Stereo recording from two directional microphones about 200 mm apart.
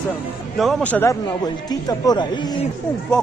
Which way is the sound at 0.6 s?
Centre (ahead or behind).